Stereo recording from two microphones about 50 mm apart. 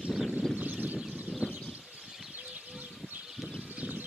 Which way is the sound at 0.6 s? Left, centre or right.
Right.